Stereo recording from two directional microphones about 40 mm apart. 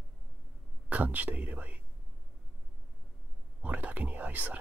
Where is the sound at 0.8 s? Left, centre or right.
Right.